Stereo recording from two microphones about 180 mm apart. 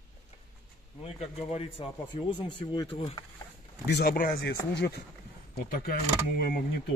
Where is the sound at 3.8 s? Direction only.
60° left (ahead or behind).